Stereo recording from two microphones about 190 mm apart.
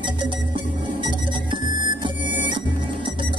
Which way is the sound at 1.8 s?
25° right (ahead or behind).